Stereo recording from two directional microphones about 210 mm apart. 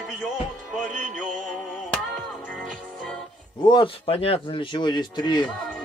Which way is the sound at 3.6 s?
25° left (ahead or behind).